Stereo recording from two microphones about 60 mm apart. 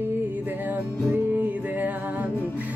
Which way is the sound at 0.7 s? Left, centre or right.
Right.